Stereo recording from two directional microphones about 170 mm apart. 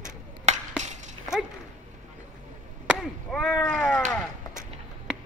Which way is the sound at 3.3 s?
5° left (ahead or behind).